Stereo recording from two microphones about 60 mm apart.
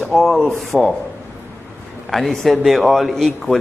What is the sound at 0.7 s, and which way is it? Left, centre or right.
Speech, left.